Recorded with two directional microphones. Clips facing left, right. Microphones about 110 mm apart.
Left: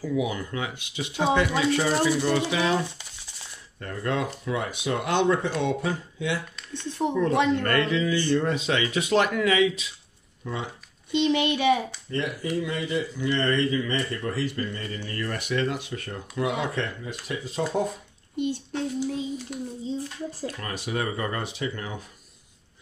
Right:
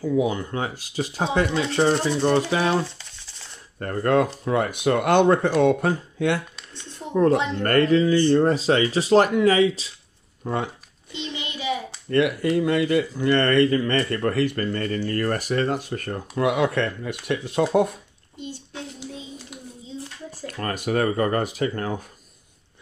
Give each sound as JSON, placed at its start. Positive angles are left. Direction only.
{"t": 0.0, "sound": "speech", "side_deg": -30}
{"t": 1.9, "sound": "speech", "side_deg": -50}
{"t": 3.8, "sound": "speech", "side_deg": -50}
{"t": 11.1, "sound": "a child's voice", "side_deg": 65}
{"t": 12.1, "sound": "speech", "side_deg": -65}
{"t": 15.0, "sound": "speech", "side_deg": -50}
{"t": 20.4, "sound": "speech", "side_deg": -50}